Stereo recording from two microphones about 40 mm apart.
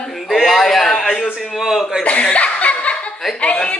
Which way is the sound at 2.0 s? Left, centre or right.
Left.